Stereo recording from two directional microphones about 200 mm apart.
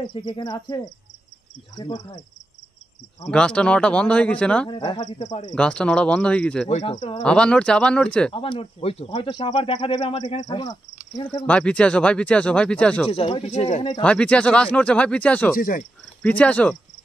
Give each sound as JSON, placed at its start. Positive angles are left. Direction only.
{"t": 0.2, "sound": "speech", "side_deg": 20}
{"t": 3.3, "sound": "speech", "side_deg": 5}
{"t": 4.6, "sound": "speech", "side_deg": 25}
{"t": 5.2, "sound": "speech", "side_deg": 35}
{"t": 5.5, "sound": "speech", "side_deg": 5}
{"t": 6.7, "sound": "speech", "side_deg": 30}
{"t": 7.2, "sound": "speech", "side_deg": 5}
{"t": 8.3, "sound": "speech", "side_deg": 25}
{"t": 11.2, "sound": "speech", "side_deg": 10}
{"t": 13.1, "sound": "speech", "side_deg": 30}
{"t": 14.0, "sound": "speech", "side_deg": 5}
{"t": 15.5, "sound": "speech", "side_deg": 45}
{"t": 16.2, "sound": "speech", "side_deg": 5}